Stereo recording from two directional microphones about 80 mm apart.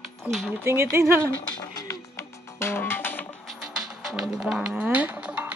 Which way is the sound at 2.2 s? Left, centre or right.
Left.